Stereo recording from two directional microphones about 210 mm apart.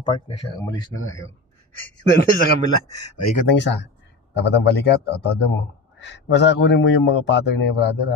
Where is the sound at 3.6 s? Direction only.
55° left (ahead or behind).